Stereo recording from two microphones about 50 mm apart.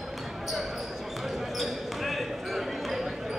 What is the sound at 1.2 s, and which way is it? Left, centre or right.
Basketball bounce, centre.